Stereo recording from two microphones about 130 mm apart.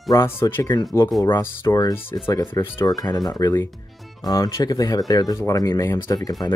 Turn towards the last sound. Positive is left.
turn(degrees=30)  # may be behind; listen again after turning